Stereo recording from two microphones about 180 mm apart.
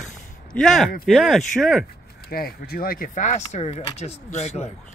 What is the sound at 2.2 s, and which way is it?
Speech, 60° left (ahead or behind).